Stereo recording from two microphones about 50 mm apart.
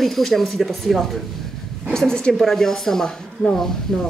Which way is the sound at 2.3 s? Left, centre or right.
Centre.